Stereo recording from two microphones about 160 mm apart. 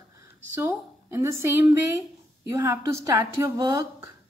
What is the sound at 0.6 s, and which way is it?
A woman's voice, 15° right (ahead or behind).